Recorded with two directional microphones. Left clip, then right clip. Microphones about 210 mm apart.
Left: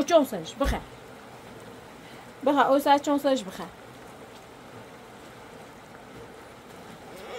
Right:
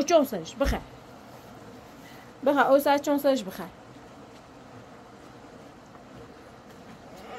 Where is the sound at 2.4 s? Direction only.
15° right (ahead or behind).